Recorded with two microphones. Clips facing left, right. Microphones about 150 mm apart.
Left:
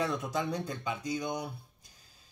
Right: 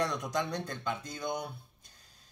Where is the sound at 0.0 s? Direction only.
5° left (ahead or behind).